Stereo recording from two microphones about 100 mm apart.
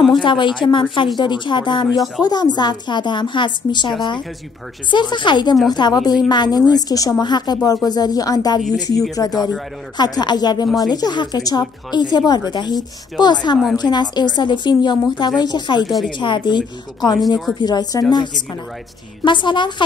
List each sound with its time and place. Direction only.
0.1 s a woman's voice: 50° left (ahead or behind)
1.9 s speech: centre (ahead or behind)
2.2 s a woman's voice: 45° left (ahead or behind)
4.9 s a woman's voice: 50° left (ahead or behind)
19.2 s a woman's voice: 50° left (ahead or behind)